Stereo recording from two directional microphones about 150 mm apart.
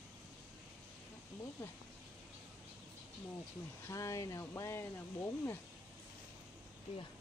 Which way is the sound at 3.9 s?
20° left (ahead or behind).